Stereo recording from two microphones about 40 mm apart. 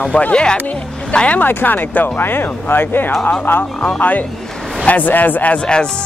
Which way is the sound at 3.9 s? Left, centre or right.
Left.